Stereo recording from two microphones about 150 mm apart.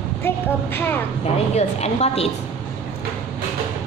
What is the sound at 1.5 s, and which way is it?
Speech, 45° left (ahead or behind).